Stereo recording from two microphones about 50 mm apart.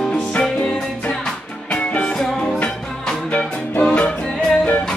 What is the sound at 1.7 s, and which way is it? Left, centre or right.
Music, left.